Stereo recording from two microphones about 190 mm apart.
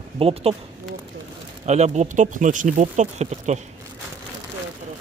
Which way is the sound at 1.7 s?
35° right (ahead or behind).